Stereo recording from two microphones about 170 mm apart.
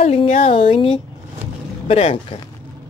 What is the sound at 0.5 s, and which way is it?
Speech, 30° left (ahead or behind).